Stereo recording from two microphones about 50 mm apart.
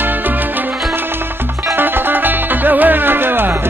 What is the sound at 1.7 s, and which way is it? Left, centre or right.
Music, right.